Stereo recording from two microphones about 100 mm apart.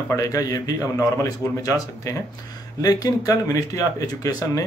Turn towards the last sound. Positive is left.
turn(degrees=35)  # may be behind; listen again after turning